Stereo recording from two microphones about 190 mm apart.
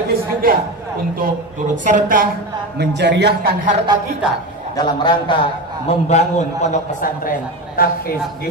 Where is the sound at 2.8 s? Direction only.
65° right (ahead or behind).